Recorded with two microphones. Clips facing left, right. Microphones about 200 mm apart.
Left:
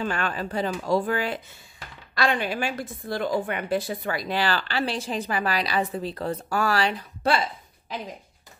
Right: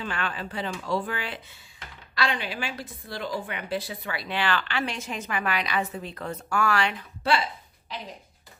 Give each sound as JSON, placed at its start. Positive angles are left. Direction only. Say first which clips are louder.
{"t": 0.0, "sound": "a woman's voice", "louder": "left 4 dB", "side_deg": 45}